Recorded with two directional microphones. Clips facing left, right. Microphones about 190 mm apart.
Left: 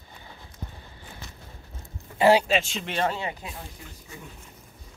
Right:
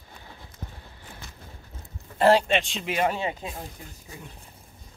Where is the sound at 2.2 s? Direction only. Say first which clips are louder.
Even; 5° left (ahead or behind).